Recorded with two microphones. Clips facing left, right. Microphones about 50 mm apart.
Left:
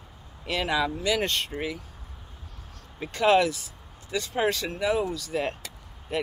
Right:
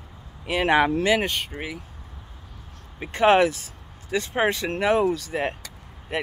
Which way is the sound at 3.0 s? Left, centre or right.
Right.